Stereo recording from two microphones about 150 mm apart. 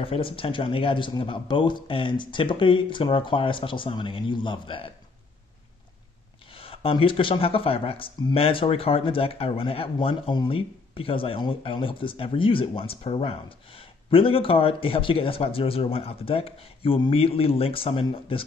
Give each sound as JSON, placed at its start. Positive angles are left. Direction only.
{"t": 0.0, "sound": "speech", "side_deg": 35}
{"t": 6.5, "sound": "speech", "side_deg": 40}